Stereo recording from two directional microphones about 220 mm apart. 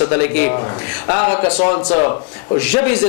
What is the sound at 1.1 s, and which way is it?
A man's voice, 20° left (ahead or behind).